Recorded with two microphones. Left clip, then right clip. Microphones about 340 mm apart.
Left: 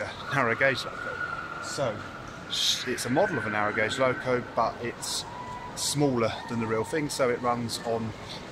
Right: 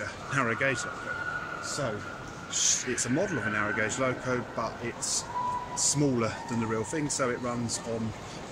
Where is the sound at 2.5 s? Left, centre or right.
Centre.